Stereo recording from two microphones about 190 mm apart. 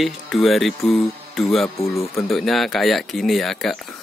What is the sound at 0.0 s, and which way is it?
Speech, centre (ahead or behind).